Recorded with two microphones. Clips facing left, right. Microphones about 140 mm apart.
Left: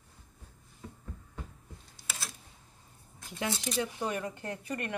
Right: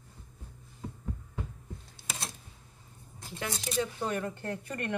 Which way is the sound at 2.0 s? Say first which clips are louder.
Right 2 dB; 25° right (ahead or behind).